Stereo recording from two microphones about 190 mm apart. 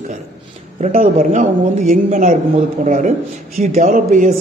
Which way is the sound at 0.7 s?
40° right (ahead or behind).